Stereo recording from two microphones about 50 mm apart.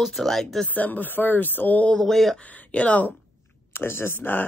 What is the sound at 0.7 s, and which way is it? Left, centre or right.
Speech, left.